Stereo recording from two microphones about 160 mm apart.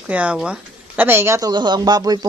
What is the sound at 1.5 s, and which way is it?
Speech, 30° right (ahead or behind).